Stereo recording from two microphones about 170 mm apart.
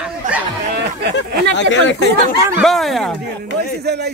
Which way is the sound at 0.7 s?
75° right (ahead or behind).